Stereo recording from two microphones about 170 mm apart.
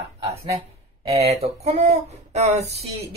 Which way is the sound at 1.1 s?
35° right (ahead or behind).